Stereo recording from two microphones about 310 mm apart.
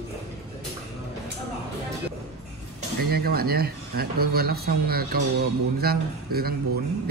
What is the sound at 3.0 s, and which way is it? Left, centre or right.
Speech, right.